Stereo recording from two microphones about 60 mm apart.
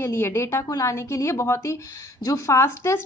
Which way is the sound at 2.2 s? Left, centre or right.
Left.